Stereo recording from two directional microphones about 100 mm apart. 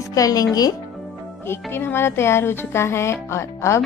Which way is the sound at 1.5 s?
25° left (ahead or behind).